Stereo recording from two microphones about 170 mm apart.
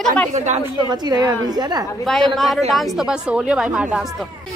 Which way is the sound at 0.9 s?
25° right (ahead or behind).